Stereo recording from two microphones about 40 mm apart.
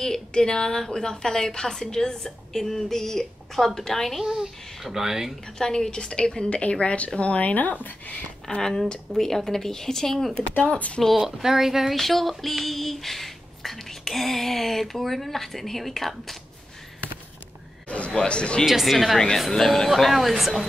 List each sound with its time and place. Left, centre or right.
0.0 s a woman's voice: centre
4.2 s a child's voice: centre
5.6 s a woman's voice: centre; by 7.5 s left
7.5 s speech: left
8.5 s a woman's voice: centre
11.0 s a sound: centre
11.4 s a child's voice: centre
11.9 s a sound: centre
17.8 s neigh: left
18.1 s a woman's voice: left
18.7 s a sound: centre
19.1 s a woman's voice: centre
19.9 s a sound: centre